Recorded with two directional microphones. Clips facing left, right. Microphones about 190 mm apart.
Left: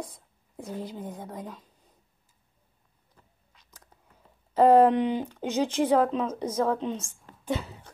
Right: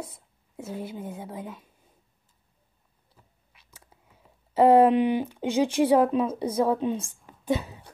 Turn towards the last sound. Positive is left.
turn(degrees=-15)  # may be behind; listen again after turning